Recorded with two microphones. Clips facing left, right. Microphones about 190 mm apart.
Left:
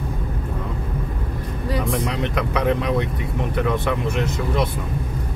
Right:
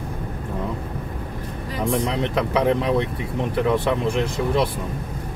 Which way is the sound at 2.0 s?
25° right (ahead or behind).